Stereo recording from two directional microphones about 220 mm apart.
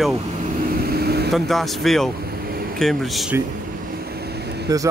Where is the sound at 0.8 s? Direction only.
45° right (ahead or behind).